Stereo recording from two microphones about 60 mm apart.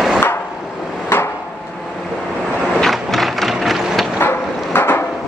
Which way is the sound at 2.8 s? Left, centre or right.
Centre.